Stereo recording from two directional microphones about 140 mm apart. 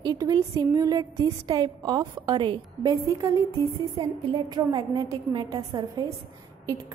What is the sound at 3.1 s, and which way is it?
A woman's voice, 25° right (ahead or behind).